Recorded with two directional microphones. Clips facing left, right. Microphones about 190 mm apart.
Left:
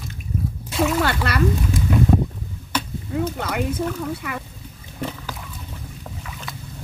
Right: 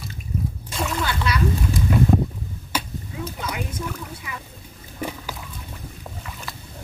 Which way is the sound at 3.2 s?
60° left (ahead or behind).